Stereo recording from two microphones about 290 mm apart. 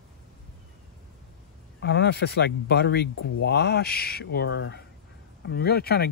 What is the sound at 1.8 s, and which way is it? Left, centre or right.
Speech, left.